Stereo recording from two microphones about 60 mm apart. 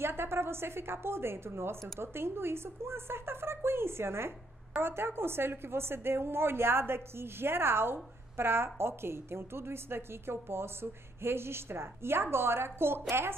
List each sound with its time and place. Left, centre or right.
0.0 s a woman's voice: right